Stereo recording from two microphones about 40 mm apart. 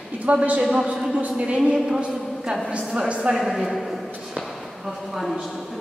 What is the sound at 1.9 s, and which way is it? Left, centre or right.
A woman's voice, right.